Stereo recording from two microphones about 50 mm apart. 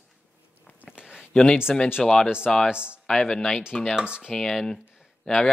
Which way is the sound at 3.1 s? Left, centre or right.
Centre.